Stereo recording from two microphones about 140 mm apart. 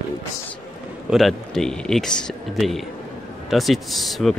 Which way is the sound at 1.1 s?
Centre (ahead or behind).